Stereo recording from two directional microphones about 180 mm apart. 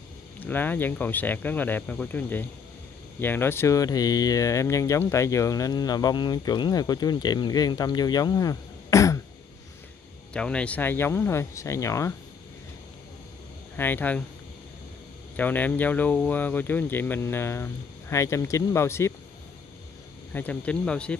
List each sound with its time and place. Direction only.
0.4 s speech: 10° left (ahead or behind)
10.3 s speech: 5° left (ahead or behind)
13.7 s speech: 10° left (ahead or behind)
15.3 s speech: 10° left (ahead or behind)
20.3 s speech: 10° left (ahead or behind)